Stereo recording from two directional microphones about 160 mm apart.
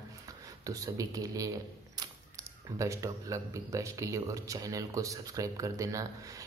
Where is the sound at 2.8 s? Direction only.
20° right (ahead or behind).